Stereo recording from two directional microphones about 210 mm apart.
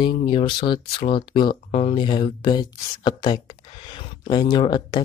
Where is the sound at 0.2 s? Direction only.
25° left (ahead or behind).